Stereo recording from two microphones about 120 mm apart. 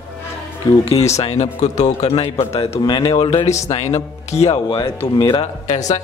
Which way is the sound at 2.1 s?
50° left (ahead or behind).